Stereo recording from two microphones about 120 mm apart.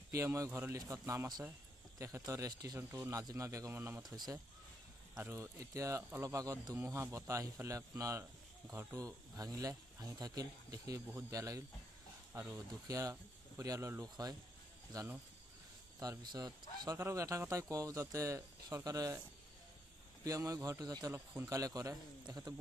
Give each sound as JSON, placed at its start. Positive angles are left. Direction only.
{"t": 0.1, "sound": "a man's voice", "side_deg": -25}
{"t": 4.1, "sound": "a man's voice", "side_deg": -30}
{"t": 16.0, "sound": "a man's voice", "side_deg": -35}
{"t": 20.2, "sound": "a man's voice", "side_deg": -30}